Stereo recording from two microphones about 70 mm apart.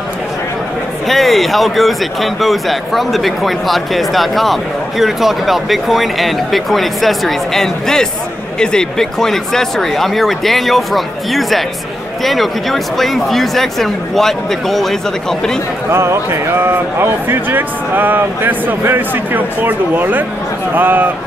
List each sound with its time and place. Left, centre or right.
1.0 s speech: centre
15.9 s speech: right